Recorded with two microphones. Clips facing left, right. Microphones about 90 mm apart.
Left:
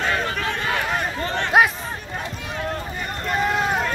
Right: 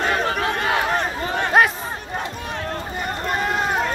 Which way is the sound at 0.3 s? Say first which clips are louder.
Right 3 dB; 35° right (ahead or behind).